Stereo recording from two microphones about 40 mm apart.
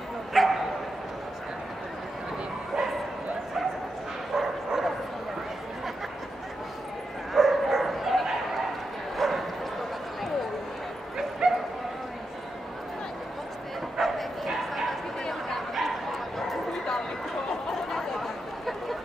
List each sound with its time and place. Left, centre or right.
0.3 s bow-wow: centre
4.4 s bow-wow: centre
7.3 s bow-wow: centre
11.4 s bow-wow: centre
13.9 s bow-wow: centre
17.9 s a sound: centre